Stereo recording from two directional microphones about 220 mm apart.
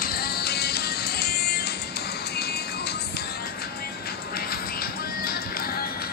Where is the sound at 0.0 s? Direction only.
45° left (ahead or behind).